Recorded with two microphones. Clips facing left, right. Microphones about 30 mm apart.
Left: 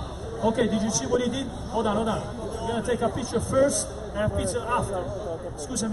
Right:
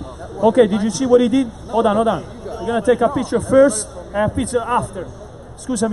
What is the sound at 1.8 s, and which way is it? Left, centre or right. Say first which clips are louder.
Speech: right 10 dB; right.